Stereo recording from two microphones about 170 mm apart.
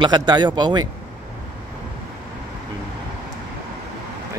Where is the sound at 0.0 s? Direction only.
25° right (ahead or behind).